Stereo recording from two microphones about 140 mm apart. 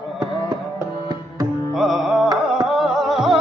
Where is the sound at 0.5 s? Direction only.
25° right (ahead or behind).